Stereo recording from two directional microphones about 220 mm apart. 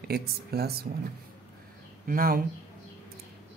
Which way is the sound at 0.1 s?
45° right (ahead or behind).